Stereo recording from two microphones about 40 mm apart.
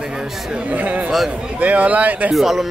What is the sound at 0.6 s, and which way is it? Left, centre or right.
A man's voice, right.